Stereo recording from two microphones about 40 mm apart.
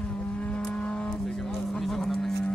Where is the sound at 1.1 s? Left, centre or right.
Centre.